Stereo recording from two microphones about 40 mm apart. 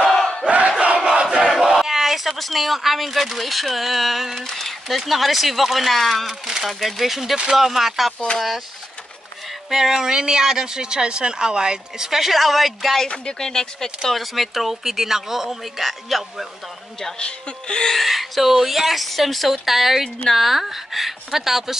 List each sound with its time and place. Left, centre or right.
0.0 s crowd: centre
0.5 s crowd: right
1.1 s speech: centre
6.4 s speech: centre
9.7 s speech: centre
13.1 s speech: left
14.2 s speech: centre
17.2 s speech: left
18.0 s speech: centre